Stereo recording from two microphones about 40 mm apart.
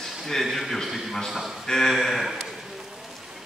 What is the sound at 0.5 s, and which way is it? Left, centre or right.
A man's voice, centre.